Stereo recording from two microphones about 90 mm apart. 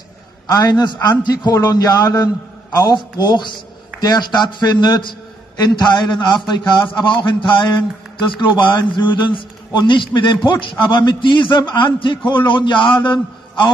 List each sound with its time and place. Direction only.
0.5 s a man's voice: 45° left (ahead or behind)